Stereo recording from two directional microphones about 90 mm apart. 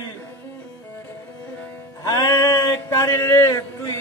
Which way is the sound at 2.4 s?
35° left (ahead or behind).